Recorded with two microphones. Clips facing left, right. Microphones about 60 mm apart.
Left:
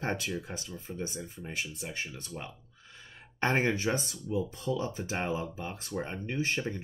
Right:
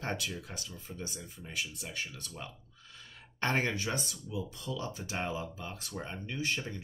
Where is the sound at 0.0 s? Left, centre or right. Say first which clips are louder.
Left 4 dB; left.